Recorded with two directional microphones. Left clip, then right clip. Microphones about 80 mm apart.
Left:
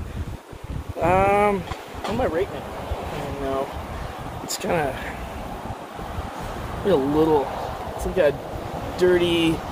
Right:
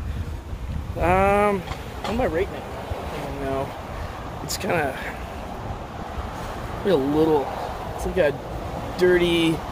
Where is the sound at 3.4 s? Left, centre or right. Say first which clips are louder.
Left 1 dB; centre.